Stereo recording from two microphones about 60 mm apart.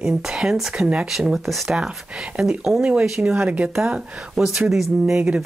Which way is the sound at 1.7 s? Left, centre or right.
Centre.